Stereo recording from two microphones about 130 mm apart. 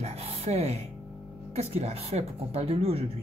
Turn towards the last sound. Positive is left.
turn(degrees=-50)  # may be behind; listen again after turning